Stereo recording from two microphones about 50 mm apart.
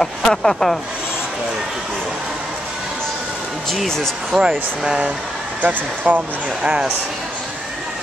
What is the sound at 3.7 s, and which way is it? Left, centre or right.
Speech, centre.